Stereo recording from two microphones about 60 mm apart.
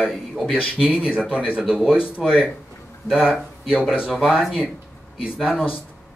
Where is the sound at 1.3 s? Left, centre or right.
Centre.